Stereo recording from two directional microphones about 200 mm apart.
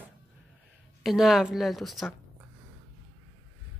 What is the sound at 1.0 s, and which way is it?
A woman's voice, centre (ahead or behind).